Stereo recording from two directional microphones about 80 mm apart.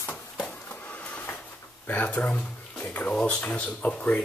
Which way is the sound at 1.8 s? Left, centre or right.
Left.